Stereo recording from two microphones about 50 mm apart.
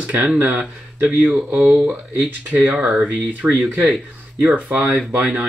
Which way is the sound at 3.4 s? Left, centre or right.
Right.